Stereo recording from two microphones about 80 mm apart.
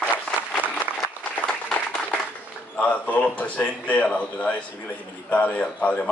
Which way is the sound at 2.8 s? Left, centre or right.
Centre.